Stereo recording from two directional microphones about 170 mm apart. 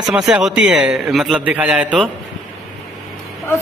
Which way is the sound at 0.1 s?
5° right (ahead or behind).